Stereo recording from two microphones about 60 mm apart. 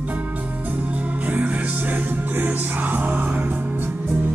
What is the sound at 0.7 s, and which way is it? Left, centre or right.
Music, right.